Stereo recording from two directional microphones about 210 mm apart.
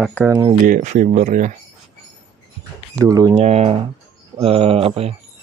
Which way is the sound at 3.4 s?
30° right (ahead or behind).